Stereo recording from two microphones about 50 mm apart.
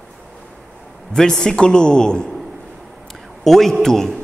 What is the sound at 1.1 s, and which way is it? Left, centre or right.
A man's voice, centre.